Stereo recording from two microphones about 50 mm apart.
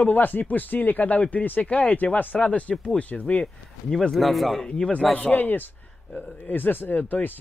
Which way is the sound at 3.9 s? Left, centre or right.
Centre.